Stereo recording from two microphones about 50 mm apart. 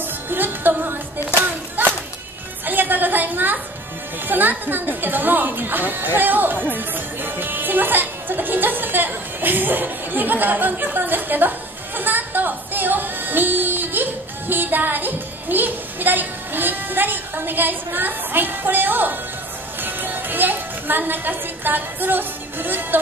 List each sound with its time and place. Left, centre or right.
0.0 s music: right
2.6 s a sound: right
4.3 s speech: right
19.8 s music: right